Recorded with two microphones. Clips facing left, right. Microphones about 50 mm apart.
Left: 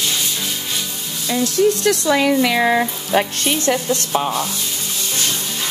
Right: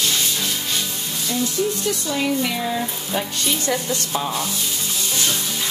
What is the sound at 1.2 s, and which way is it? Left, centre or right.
Speech, left.